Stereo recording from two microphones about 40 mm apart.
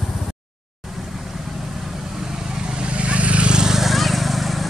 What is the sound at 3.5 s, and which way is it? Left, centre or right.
Vehicle, centre.